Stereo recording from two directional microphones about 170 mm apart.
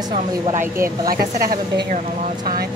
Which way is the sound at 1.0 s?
60° right (ahead or behind).